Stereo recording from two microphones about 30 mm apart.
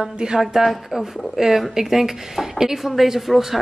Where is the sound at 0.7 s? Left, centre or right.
Centre.